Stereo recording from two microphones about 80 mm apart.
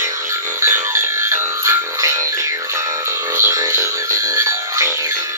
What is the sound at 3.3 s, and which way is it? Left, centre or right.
Music, right.